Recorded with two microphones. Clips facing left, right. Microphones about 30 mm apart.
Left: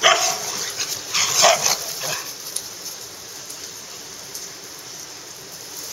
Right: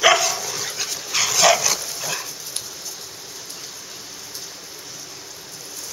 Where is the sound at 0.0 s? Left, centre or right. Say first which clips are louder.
Even; centre.